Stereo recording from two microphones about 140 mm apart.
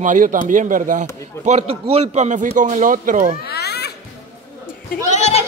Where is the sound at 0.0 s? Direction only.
70° right (ahead or behind).